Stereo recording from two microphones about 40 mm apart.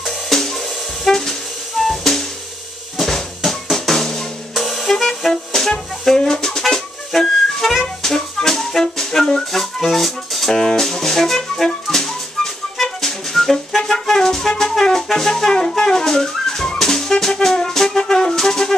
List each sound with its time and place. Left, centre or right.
0.3 s music: centre
1.0 s train: centre
1.8 s music: centre
3.0 s drum: centre
3.7 s music: centre
10.5 s music: centre